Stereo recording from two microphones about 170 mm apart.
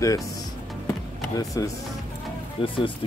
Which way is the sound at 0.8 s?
20° left (ahead or behind).